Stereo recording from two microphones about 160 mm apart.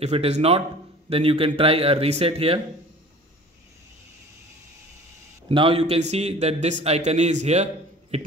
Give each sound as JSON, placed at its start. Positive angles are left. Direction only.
{"t": 0.0, "sound": "speech", "side_deg": -40}
{"t": 5.5, "sound": "a man's voice", "side_deg": -35}